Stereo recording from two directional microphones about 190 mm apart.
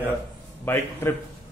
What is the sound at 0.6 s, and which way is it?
Speech, 10° left (ahead or behind).